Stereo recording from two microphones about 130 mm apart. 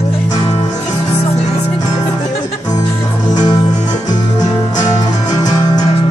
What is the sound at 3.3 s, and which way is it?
Music, 30° left (ahead or behind).